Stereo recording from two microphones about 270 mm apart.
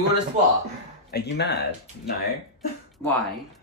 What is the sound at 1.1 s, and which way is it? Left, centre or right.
Speech, left.